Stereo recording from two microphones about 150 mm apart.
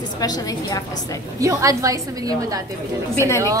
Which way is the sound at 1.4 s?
20° right (ahead or behind).